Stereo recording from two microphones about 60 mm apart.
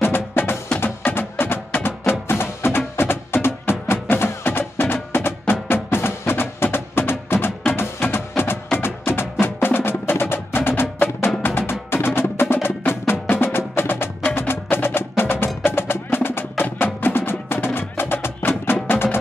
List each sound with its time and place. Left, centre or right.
0.0 s music: left
14.5 s percussion: left
15.0 s wood block: left
15.4 s music: left